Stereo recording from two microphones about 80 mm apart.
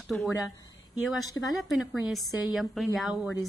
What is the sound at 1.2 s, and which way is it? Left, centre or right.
Speech, left.